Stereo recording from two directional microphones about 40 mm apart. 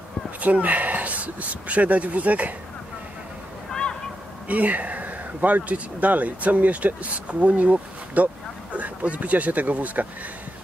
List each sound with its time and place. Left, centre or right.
0.4 s speech: right
4.5 s speech: right